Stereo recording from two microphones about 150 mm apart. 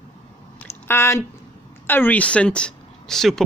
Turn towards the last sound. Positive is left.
turn(degrees=0)  # may be behind; listen again after turning